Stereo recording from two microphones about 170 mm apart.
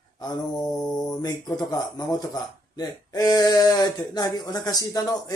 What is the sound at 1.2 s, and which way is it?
Speech, 20° left (ahead or behind).